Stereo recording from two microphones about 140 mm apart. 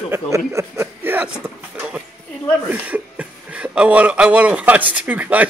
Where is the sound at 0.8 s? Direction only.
15° right (ahead or behind).